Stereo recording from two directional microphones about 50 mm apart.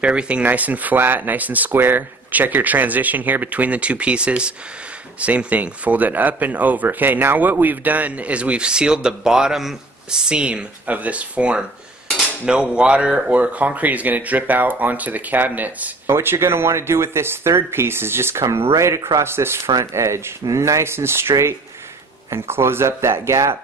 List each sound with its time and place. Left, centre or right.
0.0 s speech: right; by 9.8 s centre
10.2 s speech: right
16.1 s speech: right
19.2 s speech: right